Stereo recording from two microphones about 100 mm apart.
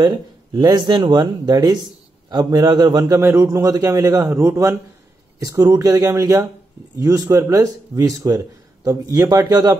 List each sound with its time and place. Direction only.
0.0 s speech: 45° right (ahead or behind)
3.2 s speech: 30° right (ahead or behind)